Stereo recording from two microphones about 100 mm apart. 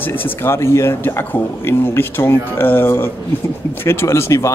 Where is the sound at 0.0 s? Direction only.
20° left (ahead or behind).